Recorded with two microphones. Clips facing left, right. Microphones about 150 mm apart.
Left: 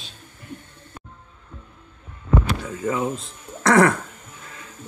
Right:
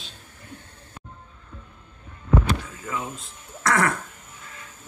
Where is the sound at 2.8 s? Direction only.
35° left (ahead or behind).